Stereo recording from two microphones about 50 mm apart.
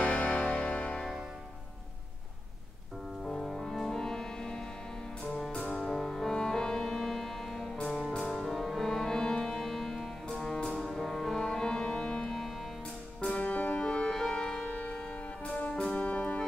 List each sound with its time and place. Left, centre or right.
0.0 s music: left
3.3 s music: centre
5.2 s music: centre
13.3 s music: left
14.1 s music: centre; by 16.3 s left